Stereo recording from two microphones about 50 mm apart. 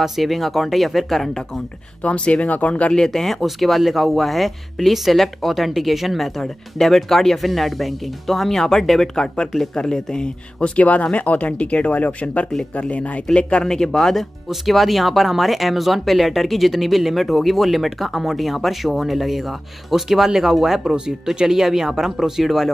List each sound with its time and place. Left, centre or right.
0.0 s speech: centre
2.0 s speech: left
2.9 s speech: centre
10.8 s speech: left; by 22.7 s centre